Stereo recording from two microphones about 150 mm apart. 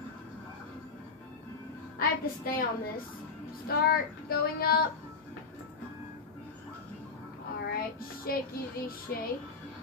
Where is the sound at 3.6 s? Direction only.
90° left.